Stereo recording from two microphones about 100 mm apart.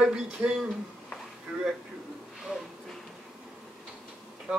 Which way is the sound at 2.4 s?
Centre (ahead or behind).